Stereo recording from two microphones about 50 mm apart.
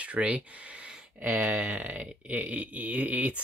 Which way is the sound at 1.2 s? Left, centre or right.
Right.